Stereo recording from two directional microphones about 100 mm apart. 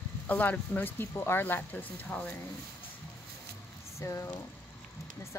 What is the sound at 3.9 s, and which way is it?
Speech, 30° left (ahead or behind).